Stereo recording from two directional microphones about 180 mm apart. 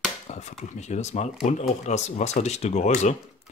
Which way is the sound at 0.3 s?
40° left (ahead or behind).